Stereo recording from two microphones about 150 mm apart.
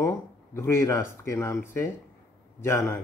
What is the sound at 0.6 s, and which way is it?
Speech, 20° left (ahead or behind).